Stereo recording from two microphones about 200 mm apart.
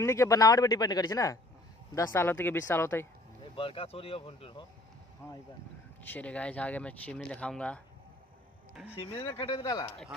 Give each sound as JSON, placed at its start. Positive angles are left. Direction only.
{"t": 0.0, "sound": "a man's voice", "side_deg": 15}
{"t": 3.5, "sound": "speech", "side_deg": 25}
{"t": 6.0, "sound": "a man's voice", "side_deg": 5}
{"t": 8.9, "sound": "speech", "side_deg": 25}